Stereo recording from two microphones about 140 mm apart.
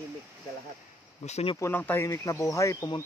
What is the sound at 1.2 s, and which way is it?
Speech, 50° left (ahead or behind).